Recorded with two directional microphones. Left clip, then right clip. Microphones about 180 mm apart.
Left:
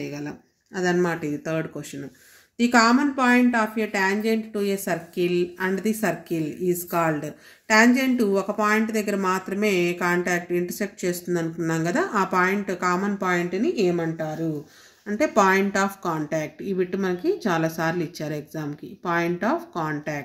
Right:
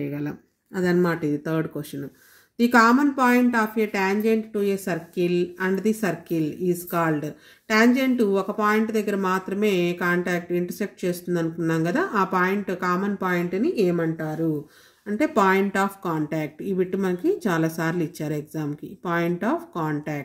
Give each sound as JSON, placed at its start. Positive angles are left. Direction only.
{"t": 0.1, "sound": "speech", "side_deg": -50}
{"t": 1.0, "sound": "speech", "side_deg": -40}
{"t": 2.7, "sound": "speech", "side_deg": -40}